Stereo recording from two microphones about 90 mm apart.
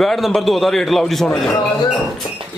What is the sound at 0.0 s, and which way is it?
A man's voice, 5° left (ahead or behind).